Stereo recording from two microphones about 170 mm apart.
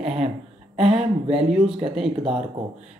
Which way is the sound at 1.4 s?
Centre (ahead or behind).